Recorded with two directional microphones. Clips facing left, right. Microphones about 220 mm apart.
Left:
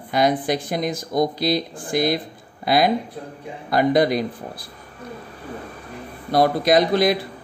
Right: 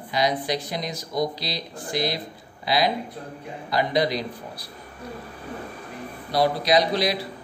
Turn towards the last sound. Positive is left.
turn(degrees=50)  # may be behind; listen again after turning